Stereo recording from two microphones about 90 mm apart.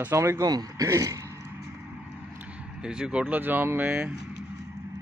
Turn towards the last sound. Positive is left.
turn(degrees=-15)  # may be behind; listen again after turning